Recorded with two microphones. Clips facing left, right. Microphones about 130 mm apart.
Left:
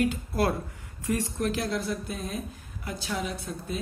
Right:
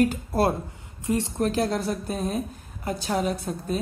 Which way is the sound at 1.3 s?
45° right (ahead or behind).